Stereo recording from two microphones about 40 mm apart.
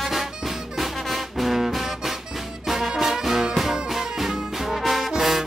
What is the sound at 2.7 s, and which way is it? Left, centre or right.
Music, centre.